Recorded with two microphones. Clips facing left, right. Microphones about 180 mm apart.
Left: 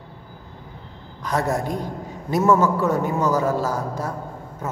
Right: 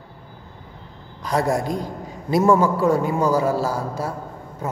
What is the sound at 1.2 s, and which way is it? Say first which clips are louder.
Speech: right 2 dB; 35° right (ahead or behind).